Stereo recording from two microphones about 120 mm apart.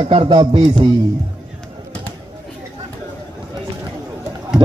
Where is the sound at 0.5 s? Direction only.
50° right (ahead or behind).